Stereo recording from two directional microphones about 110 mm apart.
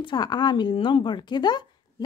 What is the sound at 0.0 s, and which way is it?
Speech, 40° left (ahead or behind).